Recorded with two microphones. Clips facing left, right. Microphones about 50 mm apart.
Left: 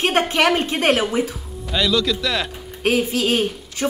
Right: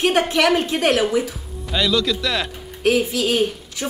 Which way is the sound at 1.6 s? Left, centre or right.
Centre.